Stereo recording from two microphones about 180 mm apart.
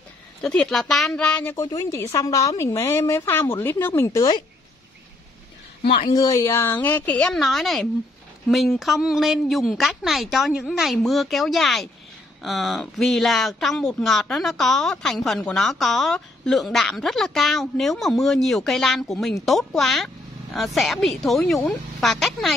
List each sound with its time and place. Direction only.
0.4 s a woman's voice: 5° left (ahead or behind)
5.9 s a woman's voice: 25° left (ahead or behind); by 22.5 s centre (ahead or behind)